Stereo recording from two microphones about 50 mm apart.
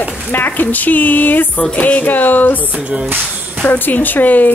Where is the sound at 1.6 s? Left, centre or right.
Left.